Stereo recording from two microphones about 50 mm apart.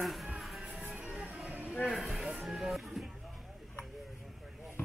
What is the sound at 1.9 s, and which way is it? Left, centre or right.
Music, centre.